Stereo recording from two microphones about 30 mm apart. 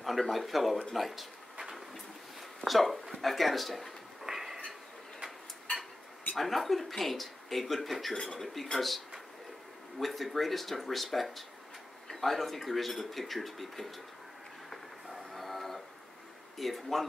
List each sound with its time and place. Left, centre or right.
0.0 s speech: centre
0.9 s a sound: centre
2.6 s speech: centre
4.3 s a sound: centre
6.3 s speech: centre
8.1 s speech: centre
8.7 s speech: centre
15.0 s train: centre
16.5 s speech: centre